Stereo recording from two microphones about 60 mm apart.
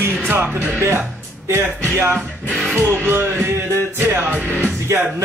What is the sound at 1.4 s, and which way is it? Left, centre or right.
Speech, right.